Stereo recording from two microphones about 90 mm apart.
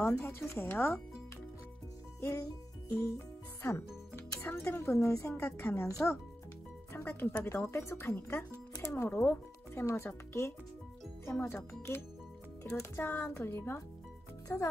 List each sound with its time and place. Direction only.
0.0 s speech: 30° left (ahead or behind)
2.1 s music: 30° left (ahead or behind)
3.6 s a woman's voice: 25° left (ahead or behind)
6.9 s music: 25° left (ahead or behind)
7.4 s speech: 30° left (ahead or behind)